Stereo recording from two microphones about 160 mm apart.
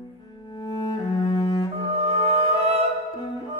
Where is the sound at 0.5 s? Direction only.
30° left (ahead or behind).